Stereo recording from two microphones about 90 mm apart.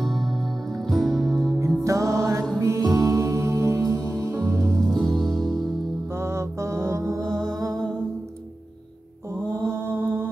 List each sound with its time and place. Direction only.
0.0 s music: 5° left (ahead or behind)
1.9 s music: 35° right (ahead or behind)
4.8 s music: 5° left (ahead or behind)
6.1 s mantra: 30° right (ahead or behind)
7.2 s music: 5° left (ahead or behind)
7.5 s music: 40° right (ahead or behind)
9.6 s mantra: 30° right (ahead or behind)